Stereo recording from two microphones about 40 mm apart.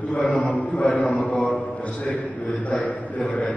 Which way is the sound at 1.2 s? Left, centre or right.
Centre.